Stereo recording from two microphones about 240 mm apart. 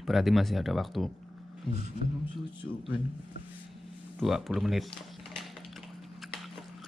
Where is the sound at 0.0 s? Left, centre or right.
Centre.